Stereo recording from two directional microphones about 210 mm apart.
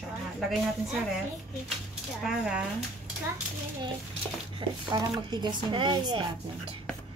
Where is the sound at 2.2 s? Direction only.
Centre (ahead or behind).